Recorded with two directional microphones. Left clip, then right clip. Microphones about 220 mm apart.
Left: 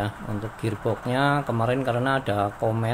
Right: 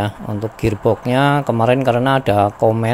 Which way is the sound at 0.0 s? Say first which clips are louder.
Right 8 dB; 35° right (ahead or behind).